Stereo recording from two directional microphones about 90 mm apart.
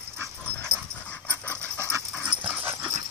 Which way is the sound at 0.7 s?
30° right (ahead or behind).